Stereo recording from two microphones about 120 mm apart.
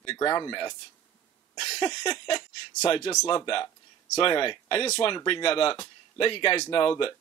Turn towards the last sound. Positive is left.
turn(degrees=45)  # may be behind; listen again after turning